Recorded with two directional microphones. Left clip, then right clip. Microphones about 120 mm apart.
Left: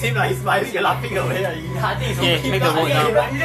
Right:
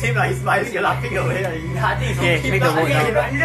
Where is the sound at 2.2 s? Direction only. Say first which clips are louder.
Left 1 dB; 5° right (ahead or behind).